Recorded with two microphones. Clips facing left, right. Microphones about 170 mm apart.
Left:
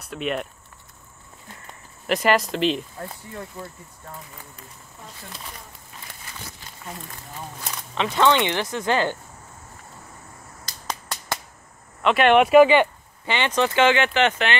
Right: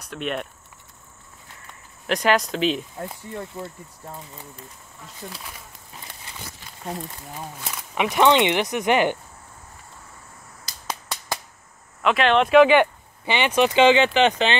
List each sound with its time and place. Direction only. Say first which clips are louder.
0.0 s speech: left 1 dB; 5° left (ahead or behind)
2.0 s speech: even; centre (ahead or behind)
3.0 s speech: right 2 dB; 20° right (ahead or behind)
7.6 s speech: right 2 dB; 10° right (ahead or behind)
12.0 s speech: left 2 dB; centre (ahead or behind)
13.2 s speech: right 2 dB; 15° right (ahead or behind)